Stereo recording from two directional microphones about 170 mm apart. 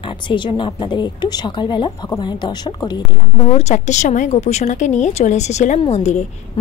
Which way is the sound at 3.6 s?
40° left (ahead or behind).